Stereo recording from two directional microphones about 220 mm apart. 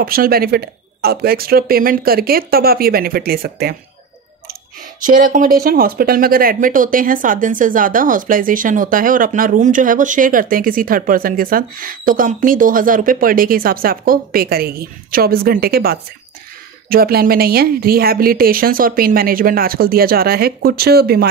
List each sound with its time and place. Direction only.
0.0 s a woman's voice: 40° right (ahead or behind)
5.0 s a woman's voice: 40° right (ahead or behind)